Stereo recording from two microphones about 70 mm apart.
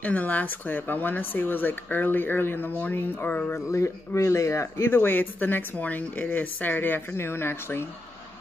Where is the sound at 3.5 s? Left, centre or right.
Left.